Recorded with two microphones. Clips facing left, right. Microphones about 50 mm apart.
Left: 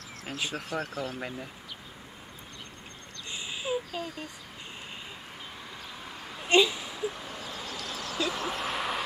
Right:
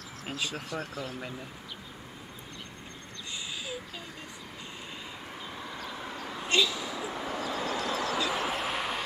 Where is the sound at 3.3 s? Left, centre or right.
Left.